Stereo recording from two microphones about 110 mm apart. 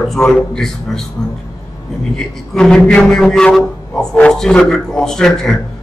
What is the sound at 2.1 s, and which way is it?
Speech, 5° left (ahead or behind).